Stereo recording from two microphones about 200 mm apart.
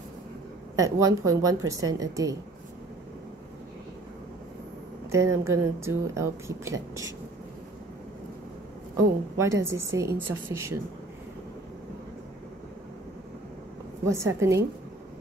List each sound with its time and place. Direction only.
0.7 s speech: 15° right (ahead or behind)
5.1 s speech: 15° right (ahead or behind)
8.9 s speech: 15° right (ahead or behind)
14.0 s speech: 15° right (ahead or behind)